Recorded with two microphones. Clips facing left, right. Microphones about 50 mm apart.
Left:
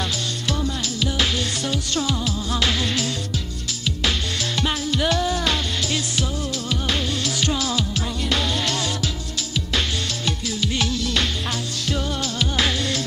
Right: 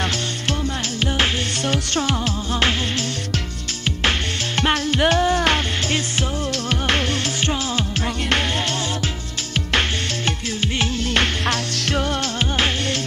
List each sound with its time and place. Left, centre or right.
1.0 s music: right
4.6 s music: right
9.7 s music: right
11.4 s music: right
12.4 s music: right